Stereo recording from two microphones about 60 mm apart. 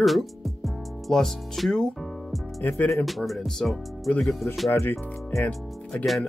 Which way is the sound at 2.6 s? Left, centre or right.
Left.